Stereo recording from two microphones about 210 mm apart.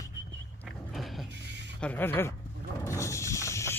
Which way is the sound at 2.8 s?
15° left (ahead or behind).